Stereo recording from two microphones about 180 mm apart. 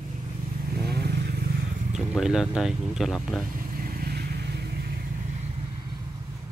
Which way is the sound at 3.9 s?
60° right (ahead or behind).